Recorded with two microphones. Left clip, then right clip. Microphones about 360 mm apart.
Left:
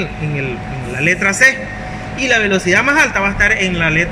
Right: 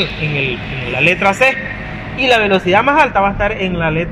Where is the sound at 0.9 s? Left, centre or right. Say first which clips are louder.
Right 1 dB; centre.